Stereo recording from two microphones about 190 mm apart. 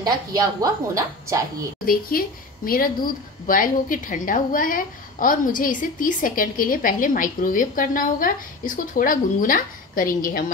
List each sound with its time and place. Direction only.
0.0 s a woman's voice: 20° right (ahead or behind)
1.9 s a woman's voice: 50° left (ahead or behind)